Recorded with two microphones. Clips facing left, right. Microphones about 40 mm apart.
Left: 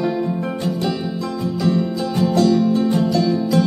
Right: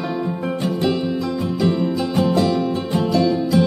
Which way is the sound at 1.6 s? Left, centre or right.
Centre.